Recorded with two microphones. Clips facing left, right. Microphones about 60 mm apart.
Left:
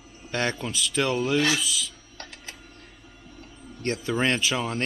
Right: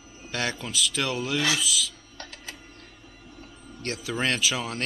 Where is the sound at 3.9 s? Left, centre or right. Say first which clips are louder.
Left 4 dB; centre.